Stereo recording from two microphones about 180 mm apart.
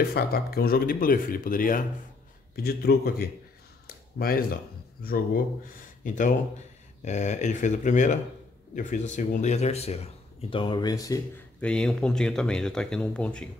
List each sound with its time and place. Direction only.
0.1 s speech: 60° left (ahead or behind)
2.5 s a man's voice: 60° left (ahead or behind)
3.8 s a sound: 55° left (ahead or behind)
5.0 s speech: 55° left (ahead or behind); by 11.2 s 20° left (ahead or behind)
11.6 s speech: 5° left (ahead or behind)